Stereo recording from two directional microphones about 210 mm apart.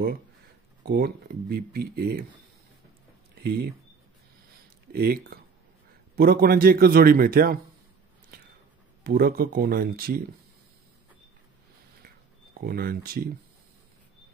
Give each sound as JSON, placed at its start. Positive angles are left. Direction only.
{"t": 0.8, "sound": "a man's voice", "side_deg": -50}
{"t": 3.4, "sound": "a man's voice", "side_deg": -50}
{"t": 4.9, "sound": "a man's voice", "side_deg": -45}
{"t": 9.0, "sound": "a man's voice", "side_deg": -45}
{"t": 12.5, "sound": "a man's voice", "side_deg": -45}